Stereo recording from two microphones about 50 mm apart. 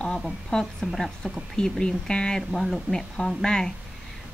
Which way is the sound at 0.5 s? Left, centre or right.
Centre.